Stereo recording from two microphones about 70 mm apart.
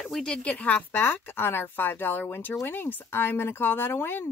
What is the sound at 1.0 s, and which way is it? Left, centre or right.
A woman's voice, left.